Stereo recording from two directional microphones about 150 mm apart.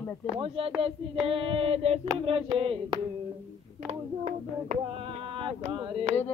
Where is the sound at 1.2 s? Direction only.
40° right (ahead or behind).